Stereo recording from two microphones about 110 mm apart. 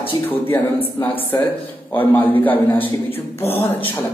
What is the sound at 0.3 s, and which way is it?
A man's voice, 20° left (ahead or behind).